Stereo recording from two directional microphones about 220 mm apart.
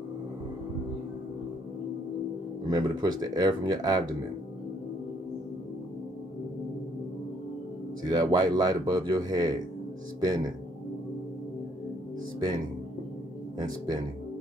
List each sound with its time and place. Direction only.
2.7 s speech: 20° right (ahead or behind)
8.1 s speech: 15° right (ahead or behind)